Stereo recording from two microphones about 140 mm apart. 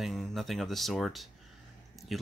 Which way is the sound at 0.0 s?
Centre (ahead or behind).